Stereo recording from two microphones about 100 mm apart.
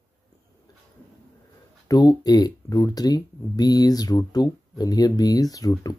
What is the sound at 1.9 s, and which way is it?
Speech, 40° left (ahead or behind).